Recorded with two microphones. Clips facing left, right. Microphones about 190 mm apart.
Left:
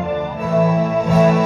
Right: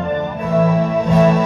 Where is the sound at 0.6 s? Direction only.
5° left (ahead or behind).